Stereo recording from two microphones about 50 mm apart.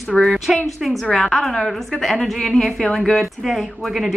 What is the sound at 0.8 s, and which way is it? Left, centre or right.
A woman's voice, centre.